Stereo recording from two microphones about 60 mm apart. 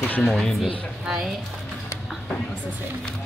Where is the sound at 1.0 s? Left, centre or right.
Centre.